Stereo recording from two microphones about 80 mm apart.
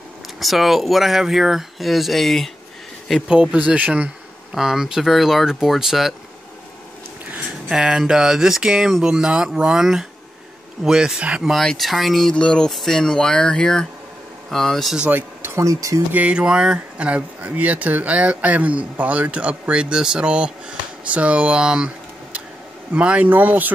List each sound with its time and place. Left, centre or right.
0.4 s speech: centre
3.3 s speech: centre
4.6 s speech: centre
7.6 s speech: centre
11.5 s speech: centre
15.0 s a sound: right
15.5 s speech: right
16.1 s speech: centre